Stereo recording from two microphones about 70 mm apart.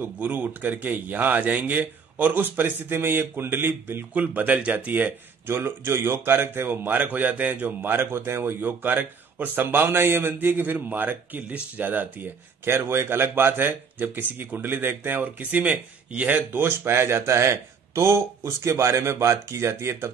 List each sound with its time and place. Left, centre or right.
0.0 s speech: right
12.6 s speech: right